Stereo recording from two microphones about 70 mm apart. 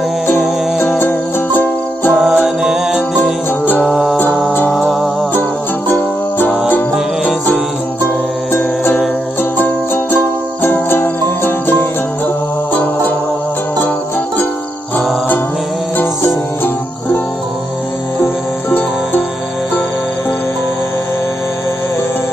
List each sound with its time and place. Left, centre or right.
0.9 s music: left
2.1 s music: centre
5.9 s music: left
10.6 s music: left